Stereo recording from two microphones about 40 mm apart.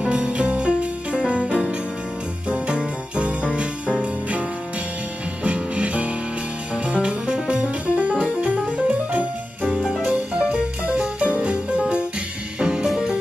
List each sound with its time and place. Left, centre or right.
0.1 s music: right
1.4 s jingle bell: centre
2.4 s jingle bell: right
4.0 s music: right